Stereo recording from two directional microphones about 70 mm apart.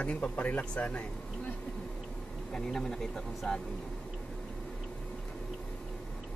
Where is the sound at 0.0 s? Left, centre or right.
Centre.